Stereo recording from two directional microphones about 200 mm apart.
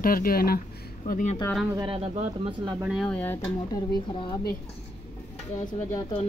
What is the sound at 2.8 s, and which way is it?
Speech, 5° right (ahead or behind).